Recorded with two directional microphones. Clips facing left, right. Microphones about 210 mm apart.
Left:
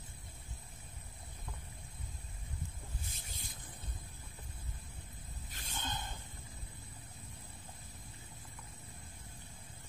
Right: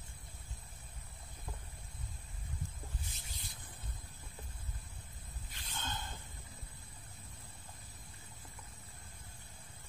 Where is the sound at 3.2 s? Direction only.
50° left (ahead or behind).